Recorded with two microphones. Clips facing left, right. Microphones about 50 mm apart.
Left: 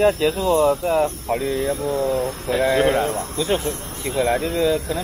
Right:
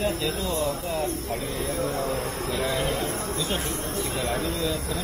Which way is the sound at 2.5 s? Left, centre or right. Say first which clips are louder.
Left 11 dB; left.